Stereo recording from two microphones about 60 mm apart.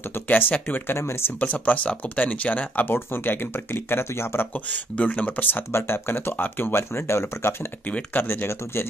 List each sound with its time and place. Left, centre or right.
0.3 s speech: left
0.9 s speech: left
1.4 s speech: left
4.9 s speech: left
5.7 s speech: left
8.1 s speech: left